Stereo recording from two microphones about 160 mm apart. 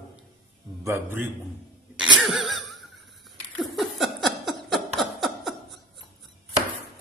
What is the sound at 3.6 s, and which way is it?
Laughter, centre (ahead or behind).